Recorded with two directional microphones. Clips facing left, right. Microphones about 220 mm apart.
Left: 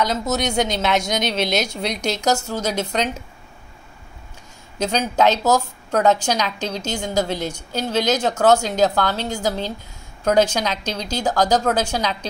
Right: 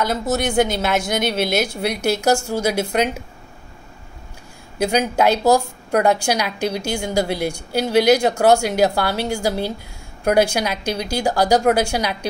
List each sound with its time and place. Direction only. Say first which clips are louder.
0.3 s speech: right 6 dB; 55° right (ahead or behind)
0.7 s a woman's voice: even; 5° right (ahead or behind)
4.7 s a woman's voice: right 2 dB; 10° right (ahead or behind)